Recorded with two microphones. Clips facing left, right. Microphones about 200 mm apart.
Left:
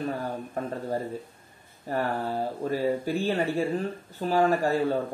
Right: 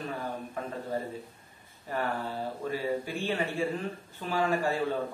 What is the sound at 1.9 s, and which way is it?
Speech, 40° left (ahead or behind).